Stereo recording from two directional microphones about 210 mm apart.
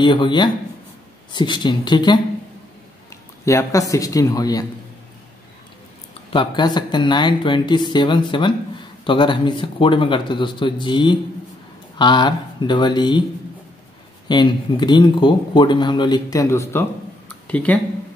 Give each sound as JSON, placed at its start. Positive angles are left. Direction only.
{"t": 0.0, "sound": "speech", "side_deg": 20}
{"t": 6.3, "sound": "speech", "side_deg": 25}
{"t": 14.2, "sound": "speech", "side_deg": 20}